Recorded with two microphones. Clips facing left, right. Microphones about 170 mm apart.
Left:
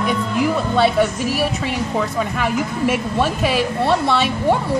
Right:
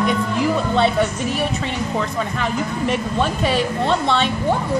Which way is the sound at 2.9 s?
5° left (ahead or behind).